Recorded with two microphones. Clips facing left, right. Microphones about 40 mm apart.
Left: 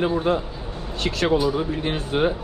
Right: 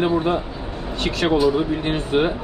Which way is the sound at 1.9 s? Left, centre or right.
Right.